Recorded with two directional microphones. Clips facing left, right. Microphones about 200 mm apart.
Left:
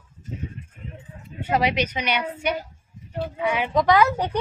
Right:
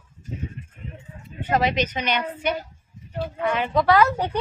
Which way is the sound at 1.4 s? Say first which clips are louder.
Even; 10° left (ahead or behind).